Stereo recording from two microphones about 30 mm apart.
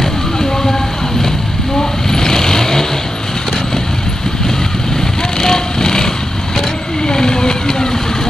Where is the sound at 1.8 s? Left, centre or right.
Centre.